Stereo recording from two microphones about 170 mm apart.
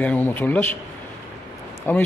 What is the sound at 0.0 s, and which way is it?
Speech, 10° left (ahead or behind).